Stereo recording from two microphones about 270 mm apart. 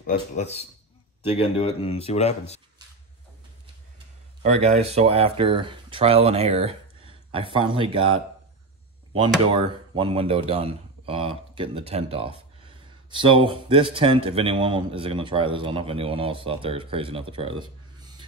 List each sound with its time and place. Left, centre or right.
0.0 s speech: left
4.4 s speech: right
9.5 s speech: centre